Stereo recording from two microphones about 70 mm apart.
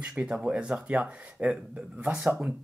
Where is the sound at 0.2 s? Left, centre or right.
Centre.